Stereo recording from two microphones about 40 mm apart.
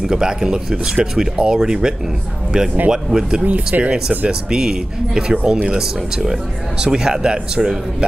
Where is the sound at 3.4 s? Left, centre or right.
Right.